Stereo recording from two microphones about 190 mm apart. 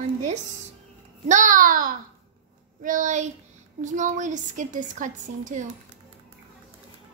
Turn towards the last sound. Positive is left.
turn(degrees=-40)  # may be behind; listen again after turning